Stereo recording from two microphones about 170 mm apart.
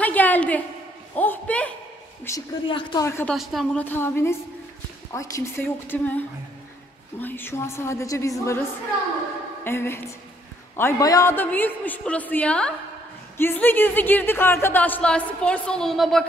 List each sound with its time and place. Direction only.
0.0 s a sound: 10° left (ahead or behind)
1.1 s speech: 10° left (ahead or behind)
2.6 s speech: 30° left (ahead or behind)
3.1 s speech: 15° left (ahead or behind)
3.3 s a woman's voice: centre (ahead or behind)
3.8 s speech: 10° left (ahead or behind)
9.7 s speech: 15° left (ahead or behind)